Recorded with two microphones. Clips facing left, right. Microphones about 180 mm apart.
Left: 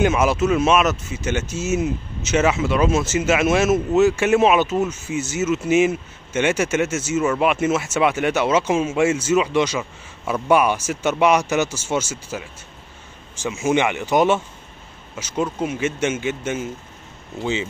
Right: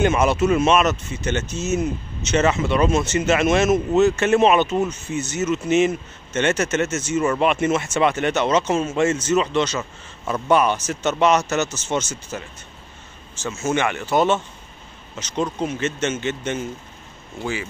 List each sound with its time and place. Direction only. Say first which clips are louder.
0.0 s speech: even; 5° left (ahead or behind)
17.4 s speech: left 3 dB; 20° left (ahead or behind)